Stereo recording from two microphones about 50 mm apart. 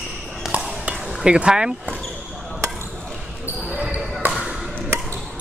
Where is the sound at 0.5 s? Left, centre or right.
Right.